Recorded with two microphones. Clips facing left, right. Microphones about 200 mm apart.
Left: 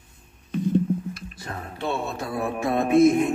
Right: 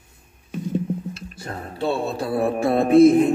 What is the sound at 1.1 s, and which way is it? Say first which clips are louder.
Speech: right 2 dB; 30° right (ahead or behind).